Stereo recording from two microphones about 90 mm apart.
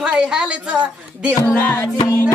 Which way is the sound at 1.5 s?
25° left (ahead or behind).